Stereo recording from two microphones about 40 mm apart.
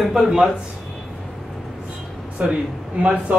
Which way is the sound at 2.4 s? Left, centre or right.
Right.